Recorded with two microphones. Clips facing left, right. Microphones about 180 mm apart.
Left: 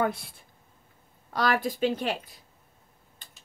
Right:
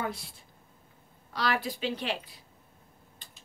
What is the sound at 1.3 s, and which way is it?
Speech, 45° left (ahead or behind).